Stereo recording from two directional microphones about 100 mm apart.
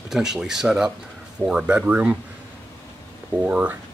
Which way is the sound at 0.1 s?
5° right (ahead or behind).